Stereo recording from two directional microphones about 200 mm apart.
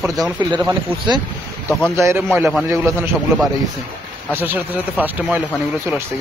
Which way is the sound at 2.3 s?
Centre (ahead or behind).